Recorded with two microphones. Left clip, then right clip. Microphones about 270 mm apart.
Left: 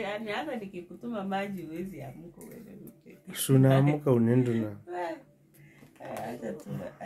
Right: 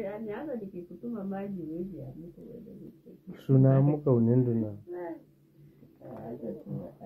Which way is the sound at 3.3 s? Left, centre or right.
Centre.